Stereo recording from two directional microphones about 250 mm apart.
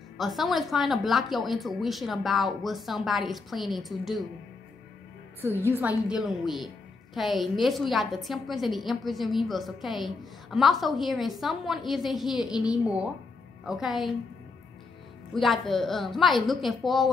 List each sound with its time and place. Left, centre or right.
0.2 s a woman's voice: centre
5.4 s a woman's voice: centre
15.3 s a woman's voice: centre